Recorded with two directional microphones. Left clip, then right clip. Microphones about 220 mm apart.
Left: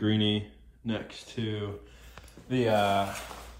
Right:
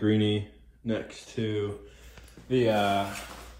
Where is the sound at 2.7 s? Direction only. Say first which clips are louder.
Left 2 dB; 30° left (ahead or behind).